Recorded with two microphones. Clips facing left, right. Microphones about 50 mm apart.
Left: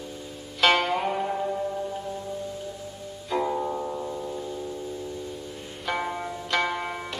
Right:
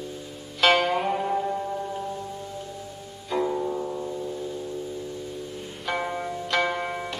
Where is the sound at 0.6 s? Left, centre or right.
Centre.